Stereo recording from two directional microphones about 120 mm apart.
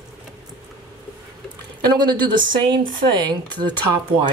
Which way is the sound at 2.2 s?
35° right (ahead or behind).